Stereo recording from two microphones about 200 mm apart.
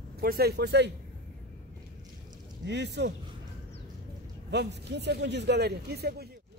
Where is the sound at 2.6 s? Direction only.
60° right (ahead or behind).